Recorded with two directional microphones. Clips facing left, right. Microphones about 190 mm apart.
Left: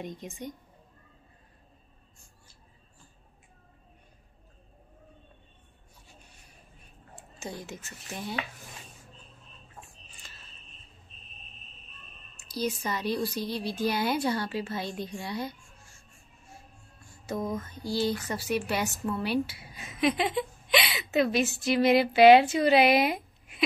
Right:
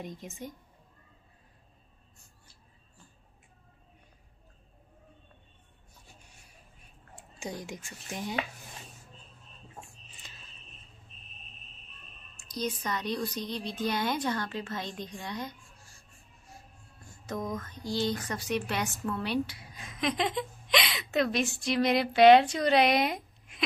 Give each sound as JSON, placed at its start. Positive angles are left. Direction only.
{"t": 0.0, "sound": "a woman's voice", "side_deg": 0}
{"t": 7.2, "sound": "speech", "side_deg": -15}
{"t": 10.2, "sound": "a sound", "side_deg": -20}
{"t": 12.4, "sound": "a woman's voice", "side_deg": 5}
{"t": 17.3, "sound": "a woman's voice", "side_deg": 5}